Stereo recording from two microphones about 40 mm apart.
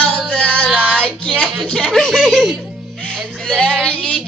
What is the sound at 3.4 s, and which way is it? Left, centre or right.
Female singing, centre.